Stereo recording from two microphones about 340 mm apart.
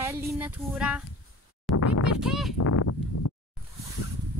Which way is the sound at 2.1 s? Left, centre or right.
Centre.